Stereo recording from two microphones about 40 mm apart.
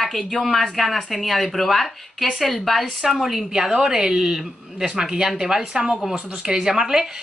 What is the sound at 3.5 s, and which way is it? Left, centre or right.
Speech, centre.